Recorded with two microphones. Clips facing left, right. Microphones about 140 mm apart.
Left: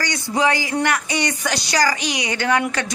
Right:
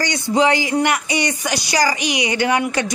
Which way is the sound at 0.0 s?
20° right (ahead or behind).